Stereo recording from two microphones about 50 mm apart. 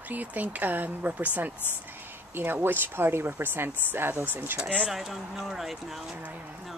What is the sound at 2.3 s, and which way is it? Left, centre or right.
Speech, right.